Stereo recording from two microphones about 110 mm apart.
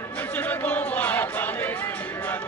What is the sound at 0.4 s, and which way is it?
Music, 15° left (ahead or behind).